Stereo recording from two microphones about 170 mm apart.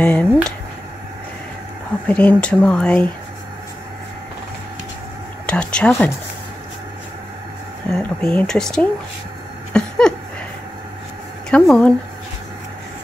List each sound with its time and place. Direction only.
0.0 s speech: 10° left (ahead or behind)
2.0 s speech: 5° left (ahead or behind)
5.5 s speech: 5° left (ahead or behind)
7.9 s speech: 10° left (ahead or behind)
9.7 s a sound: 5° left (ahead or behind)
11.5 s speech: 5° left (ahead or behind)